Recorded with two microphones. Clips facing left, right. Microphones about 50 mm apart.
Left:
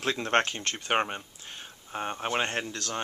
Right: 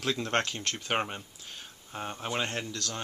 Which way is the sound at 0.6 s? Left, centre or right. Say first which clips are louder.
Left 3 dB; centre.